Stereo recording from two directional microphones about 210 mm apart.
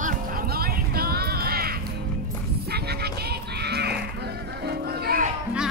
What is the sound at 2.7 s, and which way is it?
Music, 50° right (ahead or behind).